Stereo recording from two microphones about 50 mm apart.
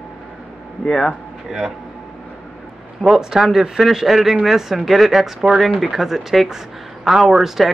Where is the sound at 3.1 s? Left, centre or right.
Centre.